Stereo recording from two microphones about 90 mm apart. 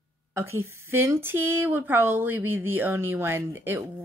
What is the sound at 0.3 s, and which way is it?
A woman's voice, 30° right (ahead or behind).